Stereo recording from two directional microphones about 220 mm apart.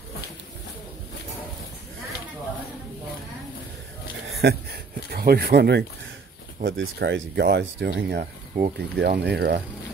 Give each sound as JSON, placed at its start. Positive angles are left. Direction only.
{"t": 4.4, "sound": "speech", "side_deg": -45}